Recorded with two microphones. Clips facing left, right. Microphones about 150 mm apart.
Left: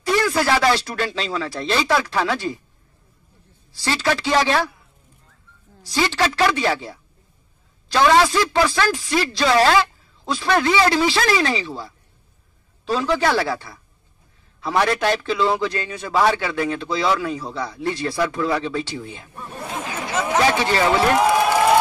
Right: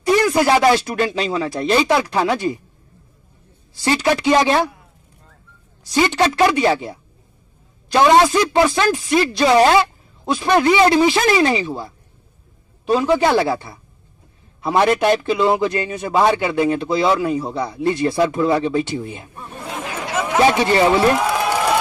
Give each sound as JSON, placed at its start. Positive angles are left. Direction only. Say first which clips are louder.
{"t": 0.0, "sound": "a sound", "louder": "right 4 dB", "side_deg": -20}
{"t": 0.8, "sound": "a man's voice", "louder": "right 5 dB", "side_deg": -20}
{"t": 3.7, "sound": "a man's voice", "louder": "right 4 dB", "side_deg": -20}
{"t": 5.9, "sound": "a man's voice", "louder": "right 4 dB", "side_deg": -20}